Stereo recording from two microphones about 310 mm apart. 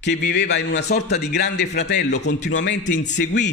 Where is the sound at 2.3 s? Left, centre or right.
Left.